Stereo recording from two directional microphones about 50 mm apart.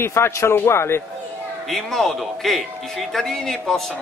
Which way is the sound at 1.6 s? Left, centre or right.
Centre.